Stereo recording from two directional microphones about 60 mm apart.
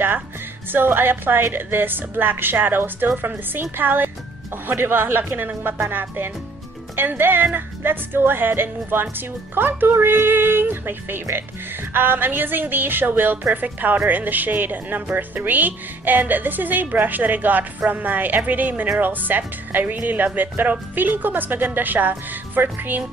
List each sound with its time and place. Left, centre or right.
0.7 s a woman's voice: right